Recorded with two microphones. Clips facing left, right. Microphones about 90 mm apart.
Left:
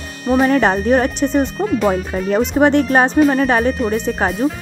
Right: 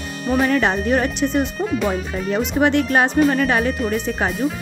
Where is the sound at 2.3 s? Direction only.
35° left (ahead or behind).